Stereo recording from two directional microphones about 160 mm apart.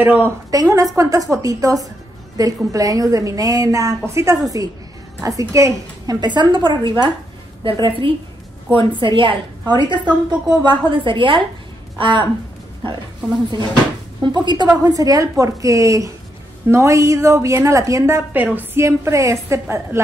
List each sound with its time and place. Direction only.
0.0 s a woman's voice: 15° right (ahead or behind); by 12.3 s 30° right (ahead or behind)
14.2 s a woman's voice: 30° right (ahead or behind)